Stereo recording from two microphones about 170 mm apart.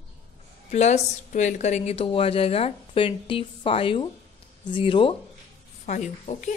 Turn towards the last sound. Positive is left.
turn(degrees=45)  # may be behind; listen again after turning